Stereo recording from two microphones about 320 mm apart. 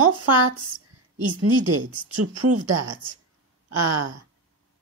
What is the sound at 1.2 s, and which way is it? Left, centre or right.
Speech, right.